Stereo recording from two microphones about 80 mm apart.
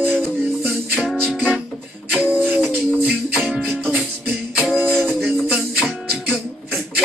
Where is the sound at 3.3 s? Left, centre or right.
Centre.